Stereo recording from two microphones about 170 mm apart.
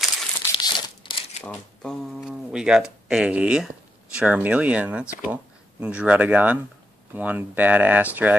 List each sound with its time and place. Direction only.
0.4 s crumpling: 30° left (ahead or behind)
1.4 s speech: 5° left (ahead or behind)